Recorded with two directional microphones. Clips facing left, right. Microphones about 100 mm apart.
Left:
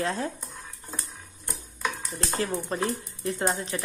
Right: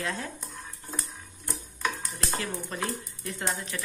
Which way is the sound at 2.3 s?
30° left (ahead or behind).